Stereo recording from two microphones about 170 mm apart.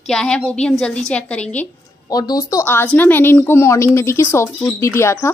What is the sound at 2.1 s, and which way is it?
Speech, 25° left (ahead or behind).